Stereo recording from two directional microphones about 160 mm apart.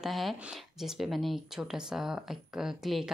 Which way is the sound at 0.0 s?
Centre (ahead or behind).